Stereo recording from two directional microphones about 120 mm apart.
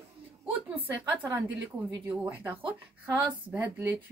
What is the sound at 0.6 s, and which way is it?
Speech, 15° right (ahead or behind).